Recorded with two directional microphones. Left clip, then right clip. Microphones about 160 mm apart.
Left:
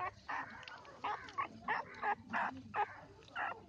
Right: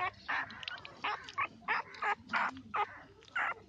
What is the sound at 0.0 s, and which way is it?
Dog, centre (ahead or behind).